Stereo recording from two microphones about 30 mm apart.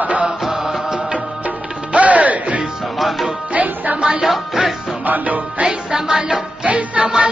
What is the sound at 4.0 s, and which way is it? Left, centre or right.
Music, right.